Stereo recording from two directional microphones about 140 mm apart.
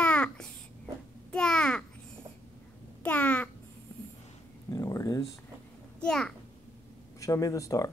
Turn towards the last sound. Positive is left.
turn(degrees=25)  # may be behind; listen again after turning